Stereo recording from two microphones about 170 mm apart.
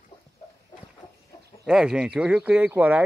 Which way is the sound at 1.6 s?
5° right (ahead or behind).